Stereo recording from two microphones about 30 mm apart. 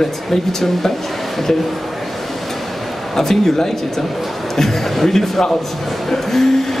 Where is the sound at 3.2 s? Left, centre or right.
Centre.